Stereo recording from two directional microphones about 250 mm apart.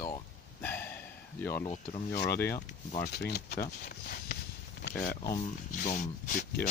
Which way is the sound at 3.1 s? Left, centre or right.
Left.